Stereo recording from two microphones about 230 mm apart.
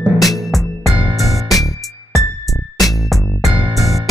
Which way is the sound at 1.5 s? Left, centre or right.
Centre.